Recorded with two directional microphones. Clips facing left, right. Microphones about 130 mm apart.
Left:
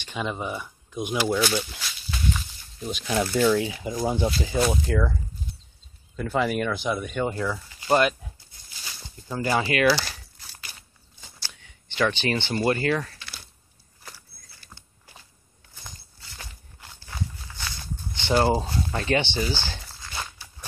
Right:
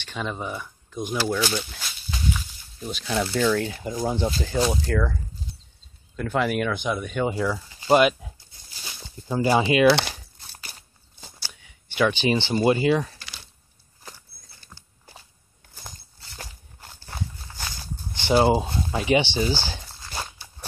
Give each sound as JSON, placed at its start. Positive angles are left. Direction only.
{"t": 0.0, "sound": "speech", "side_deg": 10}
{"t": 2.3, "sound": "snake", "side_deg": 10}
{"t": 3.3, "sound": "speech", "side_deg": 10}
{"t": 6.1, "sound": "speech", "side_deg": 0}
{"t": 9.8, "sound": "speech", "side_deg": -65}
{"t": 11.4, "sound": "a sound", "side_deg": -10}
{"t": 12.6, "sound": "speech", "side_deg": -15}
{"t": 16.3, "sound": "walk", "side_deg": -35}
{"t": 18.1, "sound": "a sound", "side_deg": -10}
{"t": 18.9, "sound": "speech", "side_deg": -15}
{"t": 20.0, "sound": "walk", "side_deg": -30}